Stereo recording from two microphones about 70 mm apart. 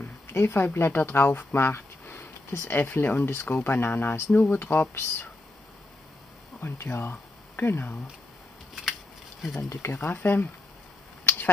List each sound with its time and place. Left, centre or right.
0.3 s speech: left
2.8 s speech: left
6.6 s speech: left
9.8 s speech: left
11.2 s a sound: left